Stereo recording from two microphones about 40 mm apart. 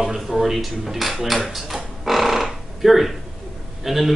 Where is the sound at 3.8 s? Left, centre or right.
Centre.